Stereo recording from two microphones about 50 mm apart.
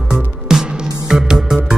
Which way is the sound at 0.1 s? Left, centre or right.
Centre.